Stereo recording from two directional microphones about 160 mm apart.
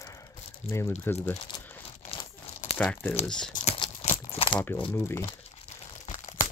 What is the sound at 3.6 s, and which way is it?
Crumpling, 40° left (ahead or behind).